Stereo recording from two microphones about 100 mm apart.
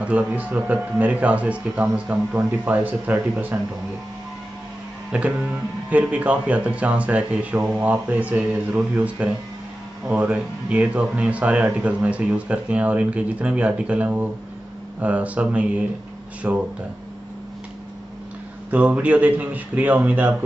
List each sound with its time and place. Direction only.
0.0 s speech: 15° right (ahead or behind)
5.1 s speech: 10° right (ahead or behind)
18.7 s speech: 15° right (ahead or behind)